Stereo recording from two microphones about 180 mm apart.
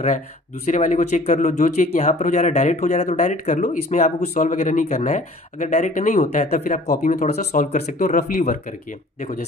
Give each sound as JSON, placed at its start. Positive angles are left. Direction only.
{"t": 0.7, "sound": "speech", "side_deg": 40}